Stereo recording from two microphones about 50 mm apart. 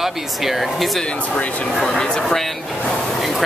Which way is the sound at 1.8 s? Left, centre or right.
Centre.